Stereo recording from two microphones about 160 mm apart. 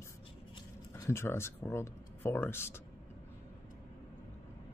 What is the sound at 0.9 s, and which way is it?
Speech, 20° left (ahead or behind).